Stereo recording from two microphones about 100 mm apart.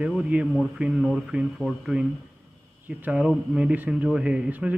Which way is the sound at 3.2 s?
5° right (ahead or behind).